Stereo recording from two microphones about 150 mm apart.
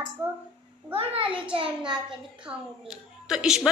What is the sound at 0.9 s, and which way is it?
Speech, 40° right (ahead or behind).